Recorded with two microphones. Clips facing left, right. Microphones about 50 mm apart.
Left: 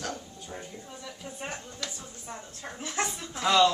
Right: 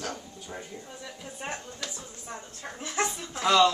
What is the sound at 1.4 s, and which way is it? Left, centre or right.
Speech, centre.